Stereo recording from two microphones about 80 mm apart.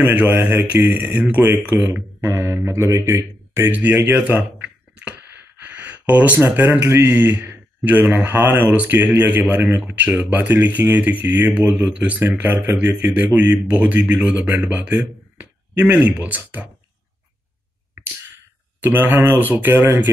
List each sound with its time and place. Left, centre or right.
0.0 s speech: right
2.2 s speech: right
3.7 s speech: right
4.3 s a sound: centre
5.6 s gasp: right
6.8 s speech: right
9.8 s speech: centre
18.8 s speech: right